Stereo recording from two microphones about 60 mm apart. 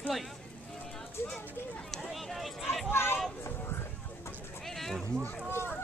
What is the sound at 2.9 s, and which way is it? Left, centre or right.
Speech, left.